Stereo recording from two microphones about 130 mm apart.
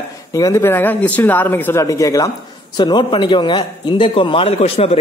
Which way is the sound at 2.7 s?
35° left (ahead or behind).